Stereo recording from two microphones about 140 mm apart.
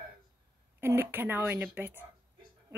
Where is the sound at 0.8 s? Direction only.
15° right (ahead or behind).